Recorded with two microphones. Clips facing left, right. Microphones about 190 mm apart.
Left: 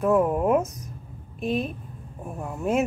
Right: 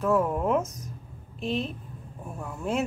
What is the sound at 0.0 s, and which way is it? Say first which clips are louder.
Speech: left 4 dB; 15° left (ahead or behind).